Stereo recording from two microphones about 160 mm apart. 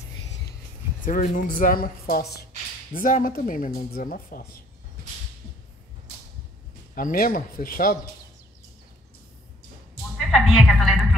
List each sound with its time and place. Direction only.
1.0 s speech: 55° left (ahead or behind); by 2.4 s 80° left
3.0 s speech: 60° left (ahead or behind)
7.0 s speech: 60° left (ahead or behind)
10.1 s a sound: centre (ahead or behind)